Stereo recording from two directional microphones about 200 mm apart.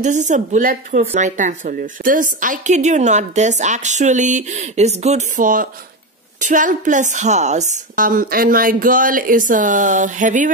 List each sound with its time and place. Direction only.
0.0 s a woman's voice: 35° right (ahead or behind)